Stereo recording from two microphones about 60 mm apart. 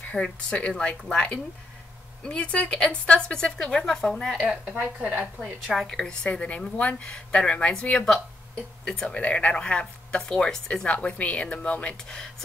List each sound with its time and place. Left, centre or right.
0.1 s speech: centre
4.2 s speech: centre
4.6 s a woman's voice: right
5.8 s speech: centre